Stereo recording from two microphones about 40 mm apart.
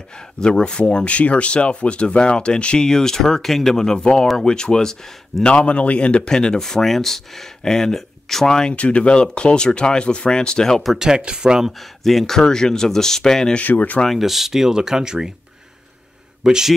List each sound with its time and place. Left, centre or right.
0.4 s speech: left
1.0 s speech: left
2.9 s speech: centre
5.3 s speech: centre
5.7 s speech: left
6.3 s speech: centre
8.7 s speech: left; by 10.8 s centre
11.0 s speech: centre
11.8 s speech: centre
12.4 s speech: centre
13.6 s speech: left
14.0 s speech: centre
16.4 s speech: centre